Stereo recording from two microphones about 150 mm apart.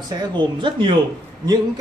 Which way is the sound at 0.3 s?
30° right (ahead or behind).